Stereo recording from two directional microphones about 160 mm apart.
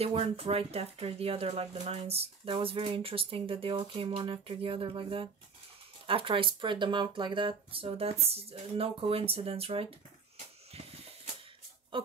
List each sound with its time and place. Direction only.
0.0 s speech: 40° right (ahead or behind)
11.9 s speech: 30° right (ahead or behind)